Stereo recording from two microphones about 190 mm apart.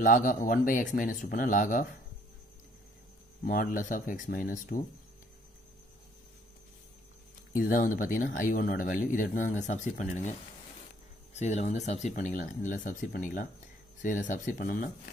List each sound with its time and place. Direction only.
0.0 s speech: 45° left (ahead or behind)
3.4 s speech: 45° left (ahead or behind)
7.5 s speech: 45° left (ahead or behind)
11.3 s speech: 35° left (ahead or behind)